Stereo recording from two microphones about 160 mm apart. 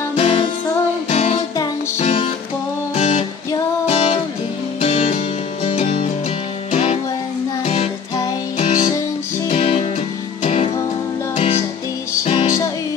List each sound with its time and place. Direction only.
0.1 s music: 40° left (ahead or behind)